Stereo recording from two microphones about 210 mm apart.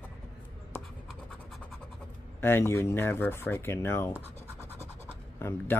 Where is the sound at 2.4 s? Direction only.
10° left (ahead or behind).